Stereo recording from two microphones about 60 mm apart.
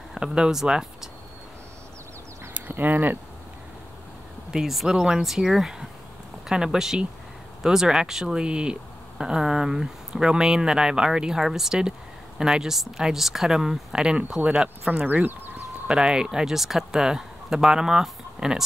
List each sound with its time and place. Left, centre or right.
0.1 s speech: centre
2.5 s speech: right
4.5 s speech: centre
15.0 s speech: right
15.9 s speech: centre